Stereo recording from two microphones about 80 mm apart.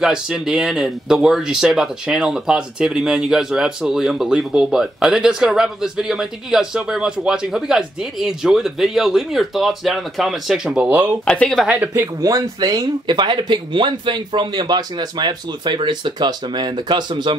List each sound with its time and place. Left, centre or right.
0.0 s speech: centre
11.2 s speech: centre
11.6 s speech: centre
11.9 s speech: right